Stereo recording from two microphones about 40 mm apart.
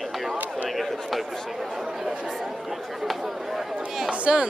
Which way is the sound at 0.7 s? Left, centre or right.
Centre.